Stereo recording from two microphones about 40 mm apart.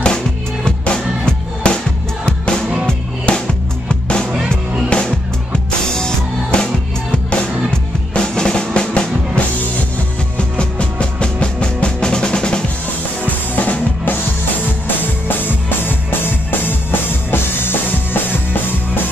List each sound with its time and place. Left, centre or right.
0.7 s music: left
2.9 s music: centre
4.3 s music: right
5.0 s music: centre
8.1 s drum: left
10.6 s music: left
12.0 s drum: left
13.6 s drum kit: left
15.2 s music: left